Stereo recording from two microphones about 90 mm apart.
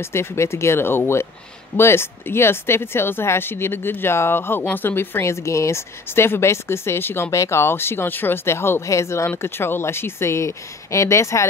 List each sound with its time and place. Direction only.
0.0 s speech: 30° left (ahead or behind)